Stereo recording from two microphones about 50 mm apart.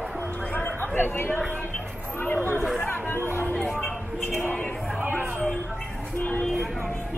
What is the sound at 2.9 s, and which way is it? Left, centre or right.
Speech, left.